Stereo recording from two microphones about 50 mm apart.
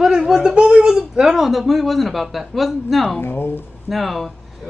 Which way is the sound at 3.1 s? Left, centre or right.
Left.